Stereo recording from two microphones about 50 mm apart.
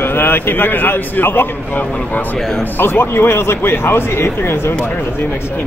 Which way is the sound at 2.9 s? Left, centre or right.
Left.